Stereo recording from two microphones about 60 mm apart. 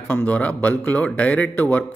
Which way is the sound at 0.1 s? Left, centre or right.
Left.